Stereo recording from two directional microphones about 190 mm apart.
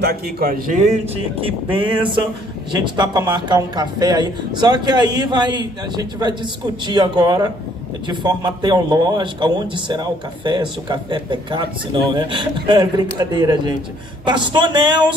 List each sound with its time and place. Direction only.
0.0 s a man's voice: 55° right (ahead or behind)
0.8 s a man's voice: 30° right (ahead or behind)